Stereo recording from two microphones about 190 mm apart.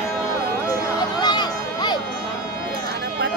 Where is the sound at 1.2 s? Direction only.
20° left (ahead or behind).